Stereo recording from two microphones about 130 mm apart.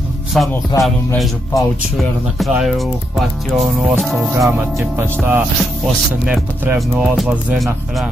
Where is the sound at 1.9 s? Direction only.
Centre (ahead or behind).